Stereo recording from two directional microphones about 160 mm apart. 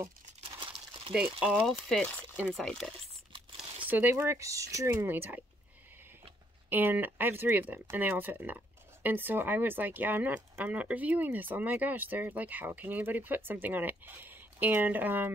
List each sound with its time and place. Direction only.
0.6 s crumpling: 30° right (ahead or behind)
1.1 s speech: 5° right (ahead or behind)
3.5 s speech: 10° right (ahead or behind)
6.7 s speech: 10° right (ahead or behind)